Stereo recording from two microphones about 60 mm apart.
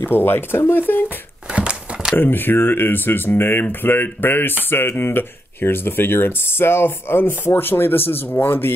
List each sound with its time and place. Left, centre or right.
0.0 s speech: left
1.0 s a sound: centre
2.1 s speech: left